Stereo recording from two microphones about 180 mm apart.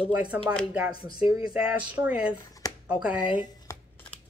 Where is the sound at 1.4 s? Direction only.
5° right (ahead or behind).